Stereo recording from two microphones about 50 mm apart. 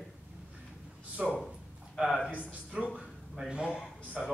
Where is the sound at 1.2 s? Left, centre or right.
Centre.